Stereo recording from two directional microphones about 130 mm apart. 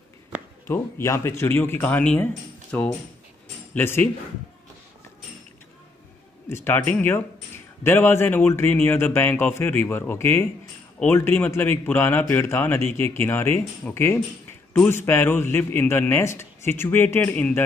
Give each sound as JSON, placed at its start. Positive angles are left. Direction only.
{"t": 0.7, "sound": "speech", "side_deg": 20}
{"t": 6.5, "sound": "speech", "side_deg": 15}